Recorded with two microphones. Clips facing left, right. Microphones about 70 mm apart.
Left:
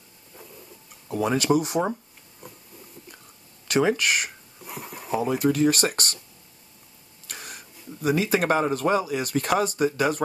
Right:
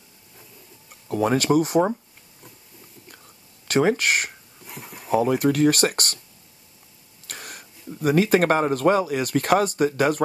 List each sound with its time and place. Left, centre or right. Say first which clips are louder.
1.1 s speech: right 3 dB; right
3.6 s speech: right 2 dB; right
4.6 s a sound: left 2 dB; centre
5.1 s speech: right 3 dB; right
7.2 s speech: right 1 dB; right